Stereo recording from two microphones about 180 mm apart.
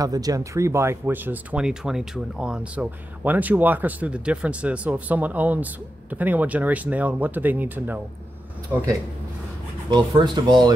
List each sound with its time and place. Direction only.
0.0 s speech: 20° right (ahead or behind)
9.8 s speech: 25° right (ahead or behind)